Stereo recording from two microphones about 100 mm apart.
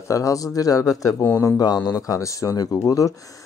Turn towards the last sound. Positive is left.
turn(degrees=35)  # may be behind; listen again after turning